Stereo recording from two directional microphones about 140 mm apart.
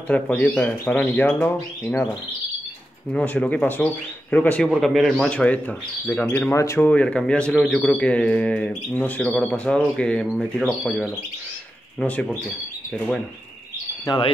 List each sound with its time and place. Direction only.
0.1 s speech: 10° left (ahead or behind)
3.1 s speech: 10° left (ahead or behind)
4.6 s speech: centre (ahead or behind); by 6.9 s 20° left (ahead or behind)
6.9 s speech: 10° left (ahead or behind)
14.0 s speech: 30° left (ahead or behind)